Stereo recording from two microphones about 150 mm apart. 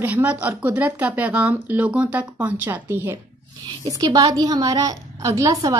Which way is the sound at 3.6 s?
25° right (ahead or behind).